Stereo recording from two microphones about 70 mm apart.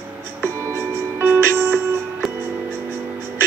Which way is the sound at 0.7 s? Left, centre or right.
Right.